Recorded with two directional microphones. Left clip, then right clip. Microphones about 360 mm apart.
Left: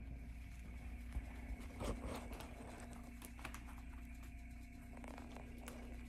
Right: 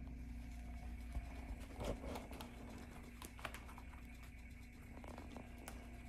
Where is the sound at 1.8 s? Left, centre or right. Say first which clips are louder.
Even; right.